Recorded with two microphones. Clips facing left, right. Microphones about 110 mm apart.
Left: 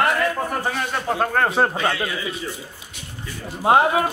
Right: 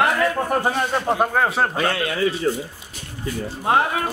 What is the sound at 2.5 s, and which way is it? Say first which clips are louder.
Speech: right 11 dB; 45° right (ahead or behind).